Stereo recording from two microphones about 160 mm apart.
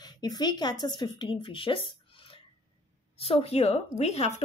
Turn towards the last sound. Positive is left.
turn(degrees=40)  # may be behind; listen again after turning